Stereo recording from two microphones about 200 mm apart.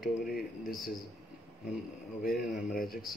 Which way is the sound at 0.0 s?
45° left (ahead or behind).